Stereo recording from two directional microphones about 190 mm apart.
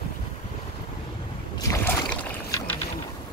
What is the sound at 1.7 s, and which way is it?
Rowboat, 15° left (ahead or behind).